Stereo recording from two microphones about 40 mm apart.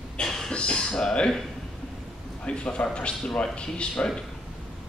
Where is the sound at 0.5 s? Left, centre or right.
Left.